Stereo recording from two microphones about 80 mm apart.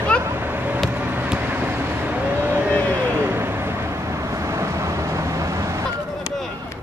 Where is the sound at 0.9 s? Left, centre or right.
Right.